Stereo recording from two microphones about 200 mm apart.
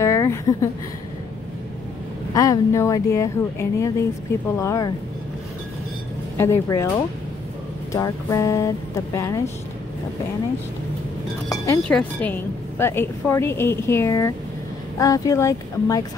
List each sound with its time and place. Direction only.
0.0 s a sound: 15° left (ahead or behind)
2.3 s speech: 15° left (ahead or behind)
6.3 s speech: 15° left (ahead or behind)
7.9 s speech: 15° left (ahead or behind)
11.4 s speech: 15° left (ahead or behind)